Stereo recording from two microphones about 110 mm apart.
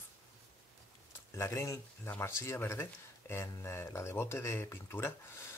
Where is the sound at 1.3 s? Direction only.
25° left (ahead or behind).